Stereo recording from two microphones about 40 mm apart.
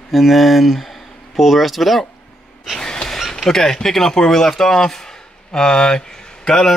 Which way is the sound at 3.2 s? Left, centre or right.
Centre.